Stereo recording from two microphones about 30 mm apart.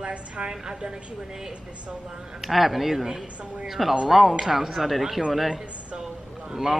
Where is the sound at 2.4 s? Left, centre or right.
Centre.